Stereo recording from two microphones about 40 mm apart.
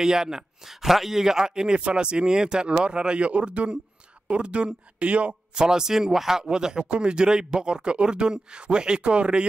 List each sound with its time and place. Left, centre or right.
0.0 s speech: centre; by 5.3 s right
5.6 s speech: centre